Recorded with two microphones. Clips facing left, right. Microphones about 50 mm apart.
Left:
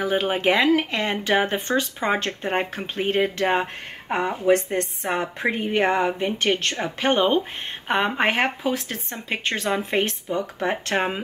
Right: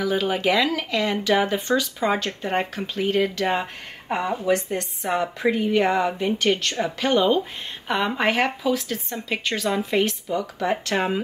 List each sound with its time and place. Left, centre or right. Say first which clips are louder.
0.0 s speech: left 1 dB; left